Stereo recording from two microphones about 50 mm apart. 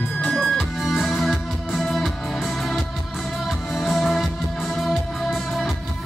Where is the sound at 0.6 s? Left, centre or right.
Centre.